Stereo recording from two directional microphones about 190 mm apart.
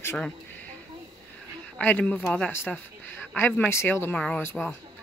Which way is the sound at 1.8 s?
10° left (ahead or behind).